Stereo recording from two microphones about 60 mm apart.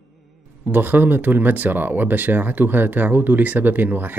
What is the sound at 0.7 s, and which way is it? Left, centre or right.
Speech, right.